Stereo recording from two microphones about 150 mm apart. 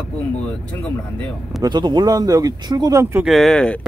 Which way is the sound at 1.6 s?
30° right (ahead or behind).